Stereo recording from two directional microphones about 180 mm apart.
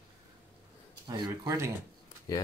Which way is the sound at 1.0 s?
25° right (ahead or behind).